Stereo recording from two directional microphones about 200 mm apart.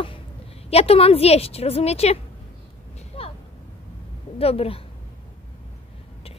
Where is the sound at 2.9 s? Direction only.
30° left (ahead or behind).